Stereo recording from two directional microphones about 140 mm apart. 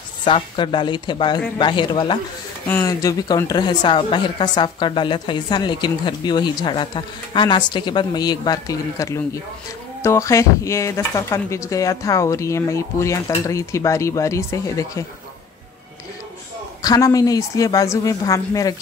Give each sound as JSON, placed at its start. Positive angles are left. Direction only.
{"t": 0.2, "sound": "a woman's voice", "side_deg": 35}
{"t": 2.6, "sound": "speech", "side_deg": 15}
{"t": 2.9, "sound": "a woman's voice", "side_deg": 25}
{"t": 16.8, "sound": "speech", "side_deg": 25}